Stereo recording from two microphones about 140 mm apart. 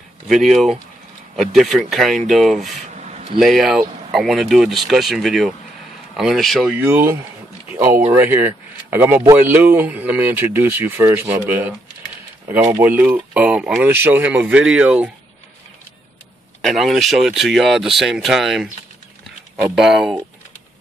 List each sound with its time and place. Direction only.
0.3 s speech: centre (ahead or behind)
2.9 s a sound: 55° right (ahead or behind)
3.3 s speech: centre (ahead or behind)
6.8 s speech: 15° right (ahead or behind)
7.7 s a sound: 15° right (ahead or behind)
8.1 s speech: 15° right (ahead or behind)
12.8 s speech: 15° right (ahead or behind)
16.6 s speech: centre (ahead or behind)
19.7 s speech: centre (ahead or behind)